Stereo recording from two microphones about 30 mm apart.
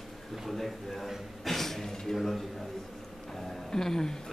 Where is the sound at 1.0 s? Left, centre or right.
Centre.